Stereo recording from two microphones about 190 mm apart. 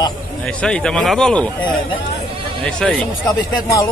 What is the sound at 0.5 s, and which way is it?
Speech, 5° left (ahead or behind).